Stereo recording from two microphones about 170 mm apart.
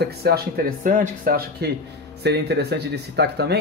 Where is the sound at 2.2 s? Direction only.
75° right (ahead or behind).